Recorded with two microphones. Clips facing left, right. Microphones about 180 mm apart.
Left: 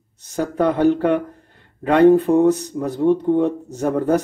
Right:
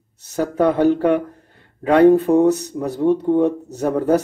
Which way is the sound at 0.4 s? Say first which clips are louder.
Right 1 dB; 10° right (ahead or behind).